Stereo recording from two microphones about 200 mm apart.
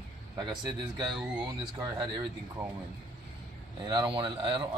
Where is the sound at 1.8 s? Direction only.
20° right (ahead or behind).